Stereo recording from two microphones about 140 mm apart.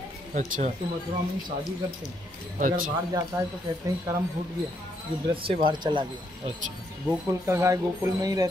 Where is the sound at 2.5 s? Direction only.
75° right (ahead or behind).